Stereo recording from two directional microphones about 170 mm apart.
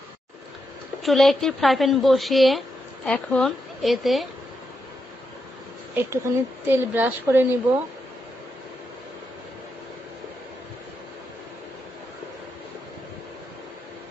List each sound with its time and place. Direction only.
1.0 s speech: centre (ahead or behind)
5.9 s a woman's voice: 15° right (ahead or behind)